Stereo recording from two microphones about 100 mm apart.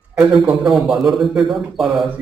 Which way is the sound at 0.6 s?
5° right (ahead or behind).